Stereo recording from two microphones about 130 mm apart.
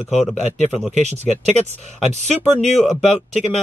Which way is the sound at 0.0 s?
Centre (ahead or behind).